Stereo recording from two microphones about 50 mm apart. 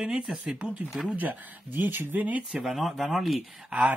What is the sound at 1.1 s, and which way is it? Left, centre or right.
Speech, right.